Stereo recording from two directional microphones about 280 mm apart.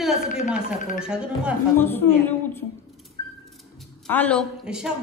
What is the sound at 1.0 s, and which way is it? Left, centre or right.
Speech, centre.